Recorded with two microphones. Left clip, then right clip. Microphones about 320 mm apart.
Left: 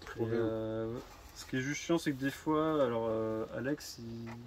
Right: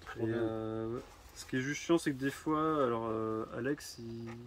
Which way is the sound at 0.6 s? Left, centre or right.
Centre.